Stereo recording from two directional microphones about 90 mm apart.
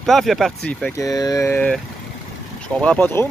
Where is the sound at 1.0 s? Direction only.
40° left (ahead or behind).